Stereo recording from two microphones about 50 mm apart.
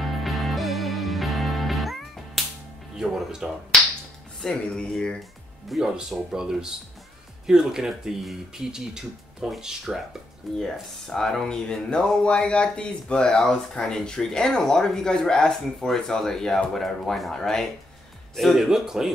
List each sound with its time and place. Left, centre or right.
0.0 s music: centre
3.0 s speech: centre
4.4 s speech: centre
4.7 s speech: centre
5.7 s speech: centre
10.6 s speech: centre
18.7 s speech: centre